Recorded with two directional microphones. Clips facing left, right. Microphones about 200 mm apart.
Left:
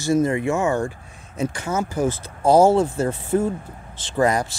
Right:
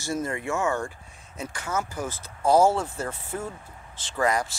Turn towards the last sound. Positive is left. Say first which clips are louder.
# left 5 dB
turn(degrees=30)  # may be behind; listen again after turning